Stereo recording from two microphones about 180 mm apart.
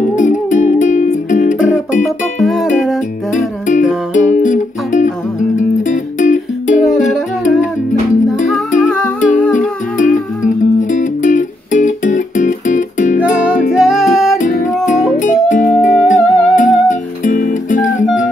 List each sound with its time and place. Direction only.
0.0 s music: 45° left (ahead or behind)
2.4 s music: centre (ahead or behind)
3.3 s music: 45° left (ahead or behind)
8.5 s music: 5° left (ahead or behind)
9.9 s music: 45° left (ahead or behind)
13.7 s music: centre (ahead or behind)
15.1 s music: 45° left (ahead or behind)